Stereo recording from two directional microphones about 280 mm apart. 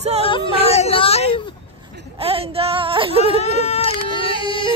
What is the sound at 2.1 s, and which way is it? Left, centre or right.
Speech, right.